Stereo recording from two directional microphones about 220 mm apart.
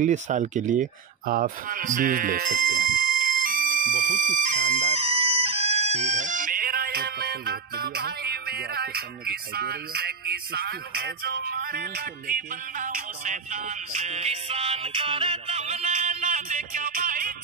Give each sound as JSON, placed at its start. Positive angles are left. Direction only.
{"t": 0.0, "sound": "speech", "side_deg": -35}